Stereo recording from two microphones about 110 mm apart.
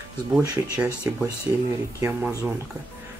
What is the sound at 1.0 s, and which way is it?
Speech, 25° right (ahead or behind).